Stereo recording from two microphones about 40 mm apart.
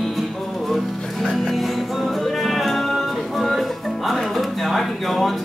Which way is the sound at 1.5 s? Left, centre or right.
Centre.